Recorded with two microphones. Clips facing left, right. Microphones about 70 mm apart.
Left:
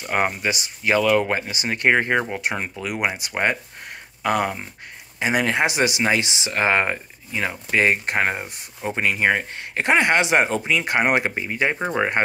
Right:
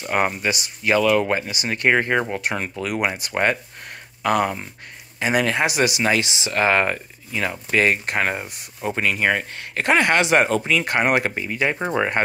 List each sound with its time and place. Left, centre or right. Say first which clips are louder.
0.1 s speech: right 1 dB; left
11.8 s speech: even; centre